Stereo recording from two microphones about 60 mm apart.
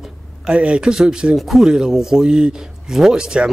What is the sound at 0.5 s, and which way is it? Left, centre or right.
A man's voice, centre.